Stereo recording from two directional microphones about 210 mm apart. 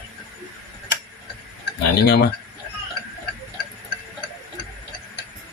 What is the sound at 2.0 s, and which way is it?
Speech, 50° left (ahead or behind).